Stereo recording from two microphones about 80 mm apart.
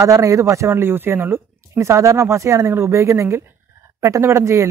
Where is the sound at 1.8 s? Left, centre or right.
Right.